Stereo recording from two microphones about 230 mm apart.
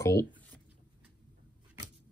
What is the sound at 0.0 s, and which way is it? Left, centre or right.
Speech, centre.